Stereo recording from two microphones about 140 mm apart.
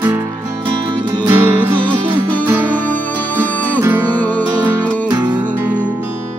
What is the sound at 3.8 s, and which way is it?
Music, 15° right (ahead or behind).